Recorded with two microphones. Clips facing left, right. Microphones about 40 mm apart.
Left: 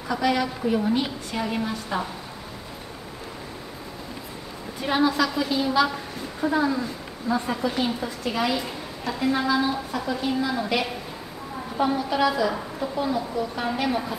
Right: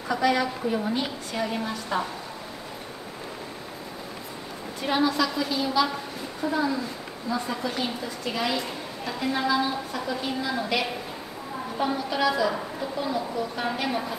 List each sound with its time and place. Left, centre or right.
0.1 s a woman's voice: centre
4.8 s a woman's voice: centre
7.5 s a woman's voice: centre